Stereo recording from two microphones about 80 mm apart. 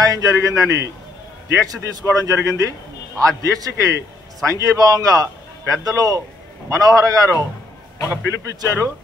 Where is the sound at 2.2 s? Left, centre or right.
Right.